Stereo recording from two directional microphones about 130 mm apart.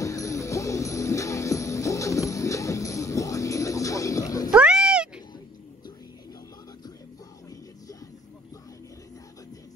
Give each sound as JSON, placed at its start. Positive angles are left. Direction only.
{"t": 0.0, "sound": "music", "side_deg": 25}
{"t": 4.5, "sound": "cat", "side_deg": -10}